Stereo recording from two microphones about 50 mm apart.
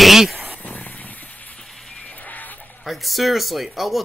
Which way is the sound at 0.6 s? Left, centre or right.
Left.